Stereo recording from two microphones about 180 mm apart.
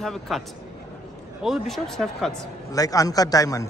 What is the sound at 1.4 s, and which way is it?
Speech, centre (ahead or behind).